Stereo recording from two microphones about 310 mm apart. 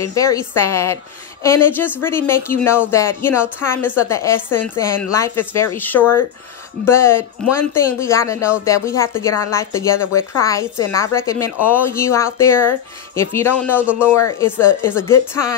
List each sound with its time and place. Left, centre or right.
0.0 s speech: centre